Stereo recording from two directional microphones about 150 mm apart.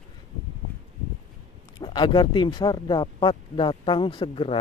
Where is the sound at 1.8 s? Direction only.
30° left (ahead or behind).